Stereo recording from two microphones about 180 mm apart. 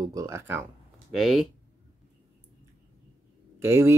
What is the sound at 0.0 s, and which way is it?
Speech, 20° right (ahead or behind).